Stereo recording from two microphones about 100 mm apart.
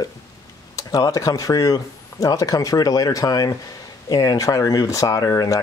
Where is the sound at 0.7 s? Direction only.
35° left (ahead or behind).